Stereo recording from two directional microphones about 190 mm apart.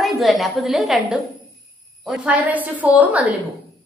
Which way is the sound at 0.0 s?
Centre (ahead or behind).